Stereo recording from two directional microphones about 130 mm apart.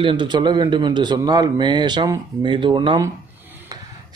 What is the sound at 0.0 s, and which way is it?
A man's voice, 40° right (ahead or behind).